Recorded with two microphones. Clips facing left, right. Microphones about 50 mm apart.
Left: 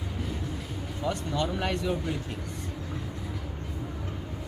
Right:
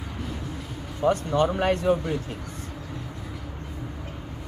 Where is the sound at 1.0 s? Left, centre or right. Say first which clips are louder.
Right 8 dB; right.